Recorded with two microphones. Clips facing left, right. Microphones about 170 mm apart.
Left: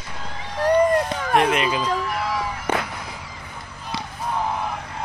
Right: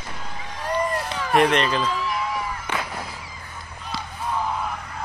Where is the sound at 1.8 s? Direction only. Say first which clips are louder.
Left 2 dB; 45° left (ahead or behind).